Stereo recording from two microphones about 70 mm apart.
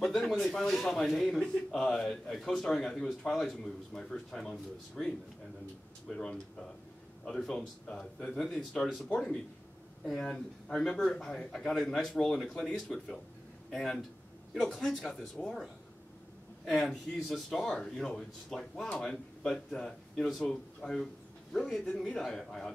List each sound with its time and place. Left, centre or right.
0.0 s a man's voice: centre
6.1 s a man's voice: centre
16.6 s a man's voice: centre